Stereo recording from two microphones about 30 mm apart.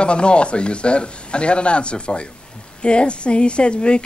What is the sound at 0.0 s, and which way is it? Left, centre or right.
Speech, left.